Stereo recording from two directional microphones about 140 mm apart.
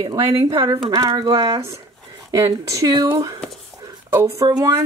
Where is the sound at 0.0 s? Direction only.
30° right (ahead or behind).